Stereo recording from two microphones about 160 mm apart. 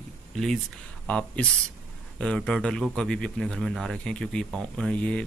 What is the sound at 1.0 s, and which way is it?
A man's voice, 5° left (ahead or behind).